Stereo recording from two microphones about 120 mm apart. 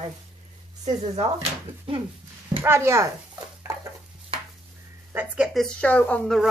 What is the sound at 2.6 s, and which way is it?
Speech, 25° right (ahead or behind).